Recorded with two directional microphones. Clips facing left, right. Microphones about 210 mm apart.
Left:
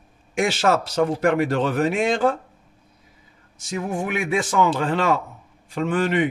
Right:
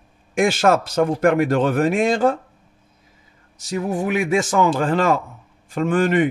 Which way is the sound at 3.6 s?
35° right (ahead or behind).